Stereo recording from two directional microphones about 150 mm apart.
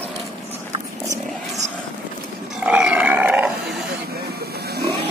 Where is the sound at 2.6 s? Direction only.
10° right (ahead or behind).